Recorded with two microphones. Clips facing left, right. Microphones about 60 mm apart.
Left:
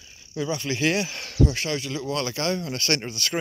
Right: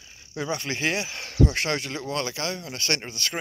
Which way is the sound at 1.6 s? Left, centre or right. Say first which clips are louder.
Right 1 dB; right.